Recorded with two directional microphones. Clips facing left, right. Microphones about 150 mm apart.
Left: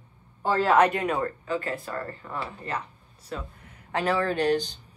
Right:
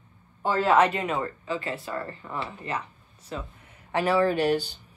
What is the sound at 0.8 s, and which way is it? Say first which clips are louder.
A man's voice: left 1 dB; 10° right (ahead or behind).